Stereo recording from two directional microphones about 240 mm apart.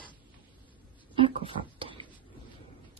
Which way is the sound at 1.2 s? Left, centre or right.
Right.